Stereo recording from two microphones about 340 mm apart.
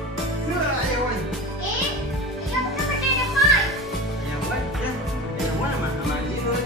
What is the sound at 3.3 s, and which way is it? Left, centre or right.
Children playing, centre.